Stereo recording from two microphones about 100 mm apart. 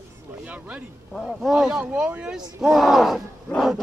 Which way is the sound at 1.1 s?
Centre (ahead or behind).